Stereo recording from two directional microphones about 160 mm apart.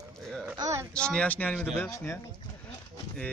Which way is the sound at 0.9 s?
5° left (ahead or behind).